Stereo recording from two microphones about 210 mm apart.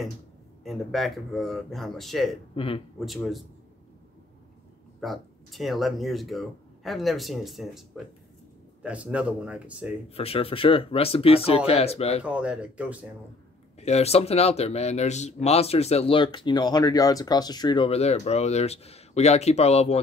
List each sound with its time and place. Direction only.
0.7 s speech: centre (ahead or behind)
2.5 s a man's voice: 25° left (ahead or behind)
3.1 s speech: centre (ahead or behind)
5.0 s speech: centre (ahead or behind)
10.0 s speech: 30° left (ahead or behind)
12.2 s speech: 5° right (ahead or behind)
13.7 s speech: 30° left (ahead or behind)